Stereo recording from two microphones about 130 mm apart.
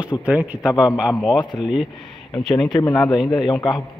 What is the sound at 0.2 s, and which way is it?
Speech, 10° right (ahead or behind).